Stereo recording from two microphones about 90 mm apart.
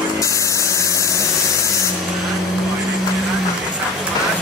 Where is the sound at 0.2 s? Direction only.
35° left (ahead or behind).